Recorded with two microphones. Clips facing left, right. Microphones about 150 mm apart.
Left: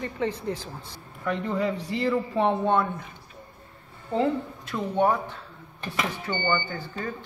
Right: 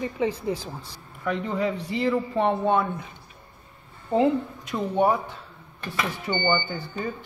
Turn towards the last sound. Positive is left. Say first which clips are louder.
# right 2 dB
turn(degrees=-10)  # may be behind; listen again after turning